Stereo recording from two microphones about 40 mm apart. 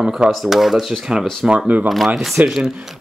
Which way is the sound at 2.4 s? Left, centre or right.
Centre.